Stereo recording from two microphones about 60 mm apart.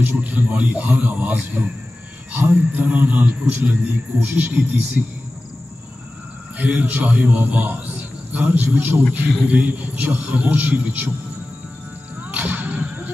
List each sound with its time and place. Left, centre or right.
0.0 s a man's voice: right
6.6 s a man's voice: right
12.4 s whip: right